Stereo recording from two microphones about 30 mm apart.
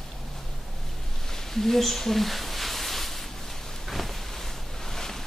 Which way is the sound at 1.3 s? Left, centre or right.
Centre.